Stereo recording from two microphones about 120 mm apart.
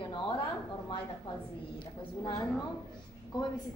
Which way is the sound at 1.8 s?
35° left (ahead or behind).